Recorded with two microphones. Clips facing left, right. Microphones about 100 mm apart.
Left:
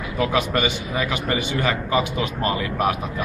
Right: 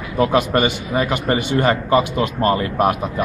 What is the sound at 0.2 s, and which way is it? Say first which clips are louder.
A man's voice: right 5 dB; 40° right (ahead or behind).